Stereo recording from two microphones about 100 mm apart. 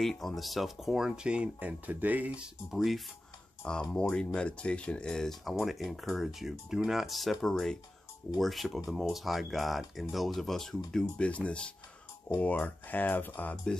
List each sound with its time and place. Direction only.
0.0 s speech: 5° left (ahead or behind)
3.9 s speech: 10° left (ahead or behind)